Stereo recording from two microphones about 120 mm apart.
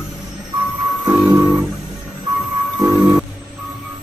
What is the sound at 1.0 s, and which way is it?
Music, 5° right (ahead or behind).